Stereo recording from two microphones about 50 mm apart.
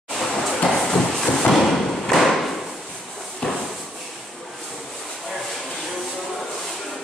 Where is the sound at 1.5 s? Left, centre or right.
Centre.